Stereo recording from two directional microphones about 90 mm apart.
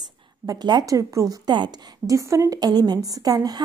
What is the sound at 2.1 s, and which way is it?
A woman's voice, 35° right (ahead or behind).